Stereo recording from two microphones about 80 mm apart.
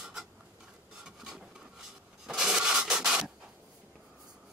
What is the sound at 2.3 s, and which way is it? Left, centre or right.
Rub, centre.